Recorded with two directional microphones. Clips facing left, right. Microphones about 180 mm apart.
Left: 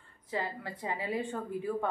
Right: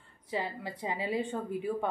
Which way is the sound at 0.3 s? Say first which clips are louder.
Right 1 dB; 15° right (ahead or behind).